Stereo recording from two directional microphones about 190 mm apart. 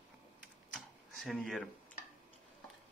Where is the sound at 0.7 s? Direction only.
Centre (ahead or behind).